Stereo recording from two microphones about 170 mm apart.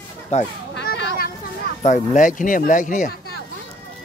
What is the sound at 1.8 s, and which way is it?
Speech, 45° left (ahead or behind).